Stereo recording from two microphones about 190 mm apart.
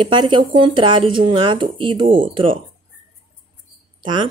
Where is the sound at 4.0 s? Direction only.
25° right (ahead or behind).